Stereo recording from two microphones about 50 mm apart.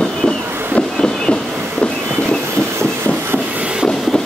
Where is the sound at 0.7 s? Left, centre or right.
Centre.